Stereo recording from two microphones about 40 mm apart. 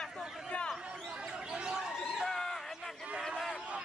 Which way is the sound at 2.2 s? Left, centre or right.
Centre.